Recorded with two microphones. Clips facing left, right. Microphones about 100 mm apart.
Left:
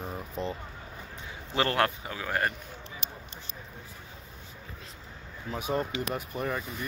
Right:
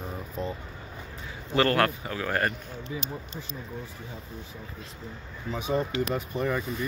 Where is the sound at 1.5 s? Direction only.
20° left (ahead or behind).